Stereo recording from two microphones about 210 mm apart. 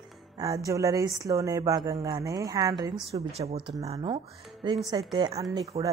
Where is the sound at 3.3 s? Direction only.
30° right (ahead or behind).